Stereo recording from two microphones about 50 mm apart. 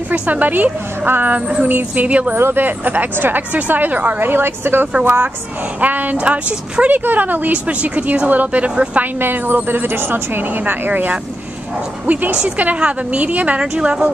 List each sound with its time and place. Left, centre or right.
0.1 s a woman's voice: right
2.3 s a woman's voice: right
4.2 s speech: right
5.0 s a woman's voice: right
7.1 s speech: right
9.2 s a woman's voice: right
13.6 s speech: centre